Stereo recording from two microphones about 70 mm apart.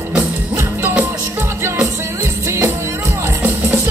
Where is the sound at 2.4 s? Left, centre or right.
Right.